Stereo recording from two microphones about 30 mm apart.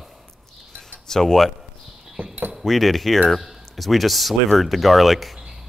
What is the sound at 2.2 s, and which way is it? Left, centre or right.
Cutlery, right.